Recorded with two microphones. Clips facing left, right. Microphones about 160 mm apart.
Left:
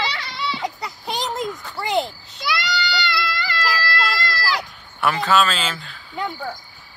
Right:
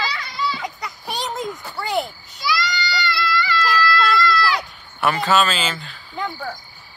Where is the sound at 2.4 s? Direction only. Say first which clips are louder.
Right 2 dB; 55° left (ahead or behind).